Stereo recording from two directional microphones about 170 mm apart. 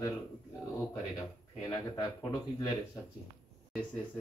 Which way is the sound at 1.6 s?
20° left (ahead or behind).